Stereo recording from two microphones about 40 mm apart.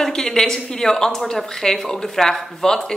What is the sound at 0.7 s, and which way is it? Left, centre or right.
A woman's voice, centre.